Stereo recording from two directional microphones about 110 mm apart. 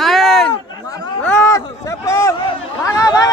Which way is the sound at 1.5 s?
30° left (ahead or behind).